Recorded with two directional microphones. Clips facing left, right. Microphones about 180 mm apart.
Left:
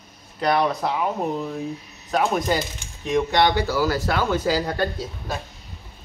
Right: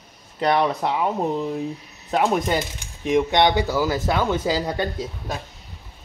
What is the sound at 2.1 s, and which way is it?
Speech, 25° right (ahead or behind).